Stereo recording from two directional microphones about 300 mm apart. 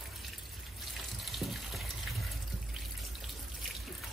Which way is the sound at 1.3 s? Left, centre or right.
Centre.